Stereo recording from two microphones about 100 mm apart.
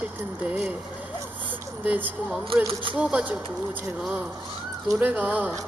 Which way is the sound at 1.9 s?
15° right (ahead or behind).